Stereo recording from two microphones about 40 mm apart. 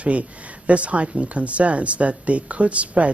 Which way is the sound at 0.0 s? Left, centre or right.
Right.